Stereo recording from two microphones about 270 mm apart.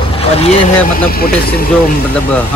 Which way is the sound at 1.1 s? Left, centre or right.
Left.